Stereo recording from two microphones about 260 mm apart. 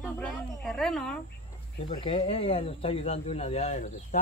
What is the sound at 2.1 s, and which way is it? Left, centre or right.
Speech, left.